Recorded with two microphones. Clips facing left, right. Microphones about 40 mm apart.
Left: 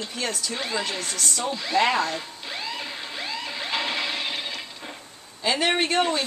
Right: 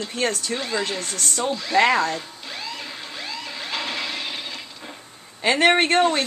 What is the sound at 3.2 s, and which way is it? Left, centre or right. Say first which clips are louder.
Music: left 1 dB; centre.